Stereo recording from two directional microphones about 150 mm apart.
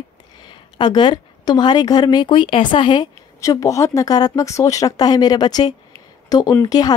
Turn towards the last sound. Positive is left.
turn(degrees=25)  # may be behind; listen again after turning